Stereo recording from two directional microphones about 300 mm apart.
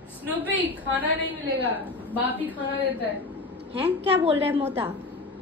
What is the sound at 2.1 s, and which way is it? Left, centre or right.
Speech, centre.